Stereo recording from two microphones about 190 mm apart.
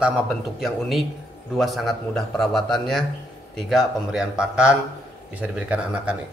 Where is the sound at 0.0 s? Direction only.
Centre (ahead or behind).